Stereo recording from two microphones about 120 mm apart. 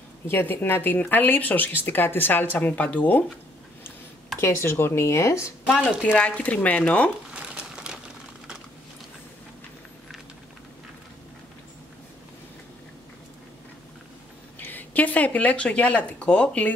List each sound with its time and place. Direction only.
0.3 s speech: 15° left (ahead or behind)
4.4 s speech: 20° left (ahead or behind)
5.7 s speech: centre (ahead or behind)
6.0 s speech: 10° left (ahead or behind)
7.3 s crumpling: 10° right (ahead or behind)
14.6 s speech: 15° left (ahead or behind)